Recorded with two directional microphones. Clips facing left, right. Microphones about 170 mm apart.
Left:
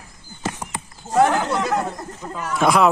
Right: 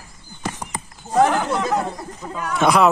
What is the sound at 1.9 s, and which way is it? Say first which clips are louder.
Speech: right 1 dB; 5° right (ahead or behind).